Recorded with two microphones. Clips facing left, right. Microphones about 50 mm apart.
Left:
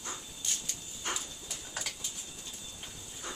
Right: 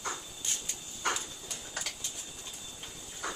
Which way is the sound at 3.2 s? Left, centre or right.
Right.